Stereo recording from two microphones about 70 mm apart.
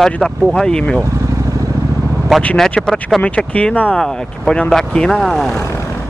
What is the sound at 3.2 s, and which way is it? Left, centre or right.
Speech, centre.